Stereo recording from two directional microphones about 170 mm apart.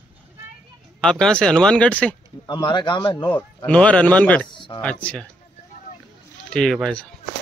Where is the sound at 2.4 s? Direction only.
25° left (ahead or behind).